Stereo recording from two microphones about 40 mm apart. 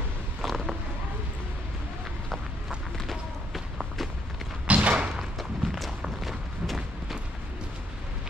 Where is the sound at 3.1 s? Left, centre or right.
Centre.